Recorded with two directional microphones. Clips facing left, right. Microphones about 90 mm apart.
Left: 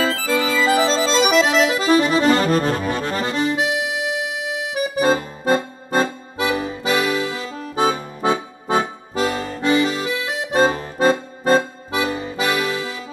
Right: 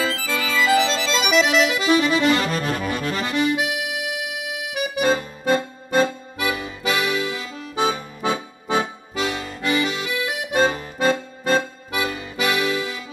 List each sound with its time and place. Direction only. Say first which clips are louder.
0.0 s music: left 4 dB; 40° left (ahead or behind)
0.4 s music: left 1 dB; 30° left (ahead or behind)